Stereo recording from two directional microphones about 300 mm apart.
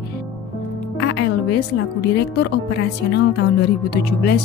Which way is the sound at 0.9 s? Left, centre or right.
Left.